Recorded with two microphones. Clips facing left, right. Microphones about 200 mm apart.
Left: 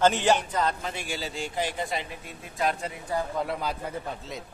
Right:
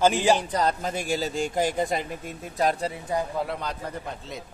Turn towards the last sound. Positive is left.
turn(degrees=0)  # may be behind; listen again after turning